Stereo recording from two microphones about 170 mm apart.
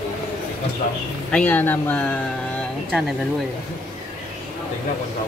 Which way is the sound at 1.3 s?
10° left (ahead or behind).